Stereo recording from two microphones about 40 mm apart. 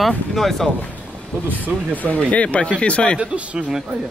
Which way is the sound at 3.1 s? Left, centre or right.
Right.